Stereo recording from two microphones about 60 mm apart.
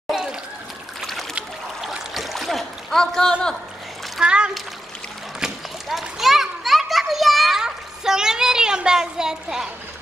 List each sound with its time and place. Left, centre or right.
0.1 s a sound: centre
1.8 s boat: centre
4.2 s splash: centre
5.4 s children playing: centre